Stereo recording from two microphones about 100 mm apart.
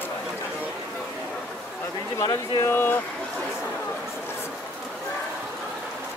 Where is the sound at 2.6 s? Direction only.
20° left (ahead or behind).